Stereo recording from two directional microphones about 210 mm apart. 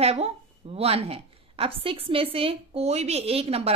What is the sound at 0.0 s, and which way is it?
A woman's voice, 30° right (ahead or behind).